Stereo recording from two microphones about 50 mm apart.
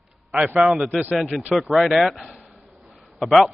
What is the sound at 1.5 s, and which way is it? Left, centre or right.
Speech, centre.